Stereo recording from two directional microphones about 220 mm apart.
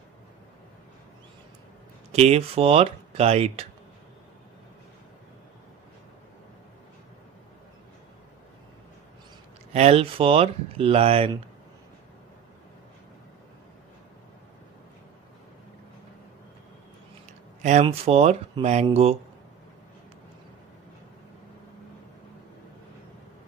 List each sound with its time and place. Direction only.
2.1 s speech: 30° right (ahead or behind)
9.7 s speech: 30° right (ahead or behind)
17.6 s speech: 30° right (ahead or behind)